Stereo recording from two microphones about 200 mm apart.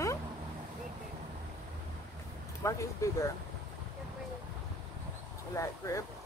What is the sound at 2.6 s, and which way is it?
Speech, 15° left (ahead or behind).